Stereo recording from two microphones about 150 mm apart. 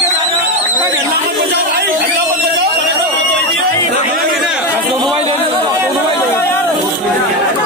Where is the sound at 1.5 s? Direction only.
90° right.